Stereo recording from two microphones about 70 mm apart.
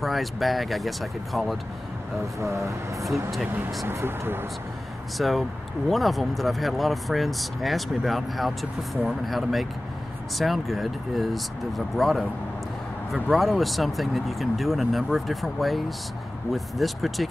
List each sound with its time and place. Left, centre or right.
0.0 s speech: centre
2.3 s speech: right
5.1 s speech: centre